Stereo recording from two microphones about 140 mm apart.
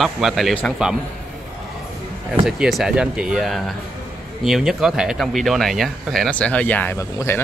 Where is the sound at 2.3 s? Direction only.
5° right (ahead or behind).